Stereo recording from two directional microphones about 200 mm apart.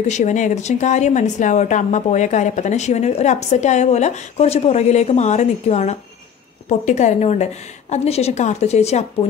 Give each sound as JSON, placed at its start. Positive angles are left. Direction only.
{"t": 0.1, "sound": "a woman's voice", "side_deg": 35}